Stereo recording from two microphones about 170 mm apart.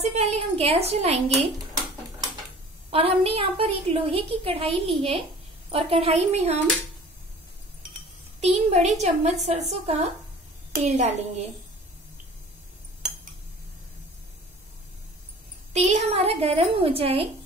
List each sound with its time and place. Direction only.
0.0 s a woman's voice: 35° right (ahead or behind)
2.9 s a woman's voice: 35° right (ahead or behind)
8.7 s a woman's voice: 40° right (ahead or behind)
15.7 s a woman's voice: 40° right (ahead or behind)